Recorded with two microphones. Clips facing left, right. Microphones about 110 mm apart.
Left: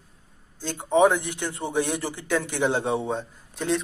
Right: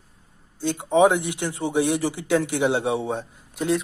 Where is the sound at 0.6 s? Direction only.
15° right (ahead or behind).